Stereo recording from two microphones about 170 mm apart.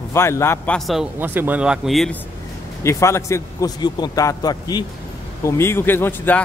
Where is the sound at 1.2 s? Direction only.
10° right (ahead or behind).